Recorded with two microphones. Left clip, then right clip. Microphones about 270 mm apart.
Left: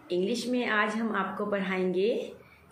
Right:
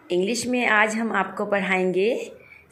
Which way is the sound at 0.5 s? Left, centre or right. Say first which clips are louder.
Right 10 dB; right.